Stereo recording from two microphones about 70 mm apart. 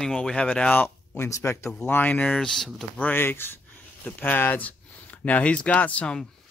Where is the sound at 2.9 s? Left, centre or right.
Left.